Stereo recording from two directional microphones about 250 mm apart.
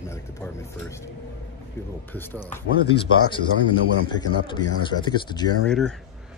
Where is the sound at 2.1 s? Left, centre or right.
Centre.